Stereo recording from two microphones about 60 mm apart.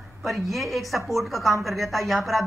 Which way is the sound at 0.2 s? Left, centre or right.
Centre.